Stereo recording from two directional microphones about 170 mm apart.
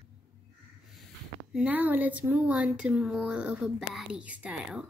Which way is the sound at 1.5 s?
10° right (ahead or behind).